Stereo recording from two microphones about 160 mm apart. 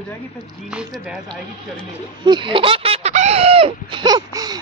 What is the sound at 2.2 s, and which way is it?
Speech, 30° right (ahead or behind).